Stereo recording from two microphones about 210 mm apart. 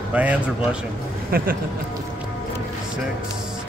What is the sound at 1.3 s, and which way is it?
Speech, 45° right (ahead or behind).